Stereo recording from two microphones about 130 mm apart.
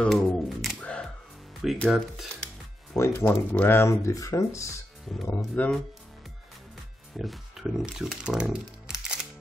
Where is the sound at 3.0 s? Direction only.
15° left (ahead or behind).